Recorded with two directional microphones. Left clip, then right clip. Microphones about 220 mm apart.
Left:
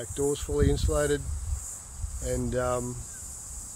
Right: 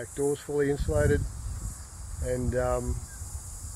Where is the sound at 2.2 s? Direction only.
15° left (ahead or behind).